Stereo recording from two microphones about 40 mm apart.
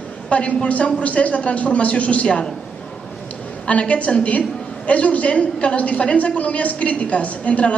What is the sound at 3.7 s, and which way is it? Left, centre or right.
A woman's voice, left.